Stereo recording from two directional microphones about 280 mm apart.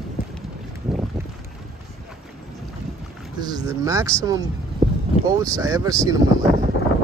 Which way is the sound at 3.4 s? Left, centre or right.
Centre.